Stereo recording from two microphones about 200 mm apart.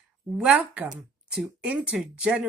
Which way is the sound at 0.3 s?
5° right (ahead or behind).